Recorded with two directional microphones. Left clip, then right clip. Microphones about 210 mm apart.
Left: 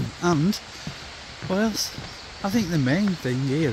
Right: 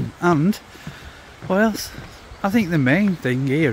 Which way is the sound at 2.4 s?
15° right (ahead or behind).